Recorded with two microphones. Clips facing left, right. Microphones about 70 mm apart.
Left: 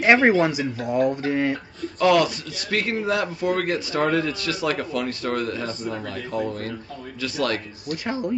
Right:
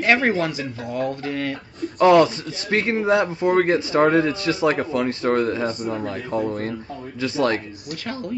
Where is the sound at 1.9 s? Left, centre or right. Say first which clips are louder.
Right 4 dB; right.